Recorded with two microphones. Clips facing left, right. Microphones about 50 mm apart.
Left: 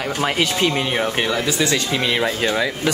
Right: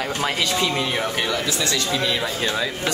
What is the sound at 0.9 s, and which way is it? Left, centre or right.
Speech, left.